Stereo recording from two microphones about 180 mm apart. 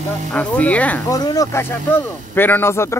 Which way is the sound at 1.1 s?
20° left (ahead or behind).